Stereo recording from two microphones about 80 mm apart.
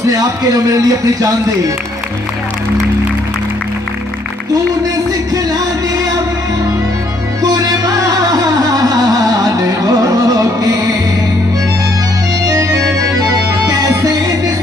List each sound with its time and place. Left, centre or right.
0.1 s a man's voice: right
7.5 s music: right
12.4 s music: right